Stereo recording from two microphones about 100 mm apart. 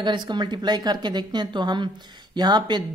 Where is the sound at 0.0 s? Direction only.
50° right (ahead or behind).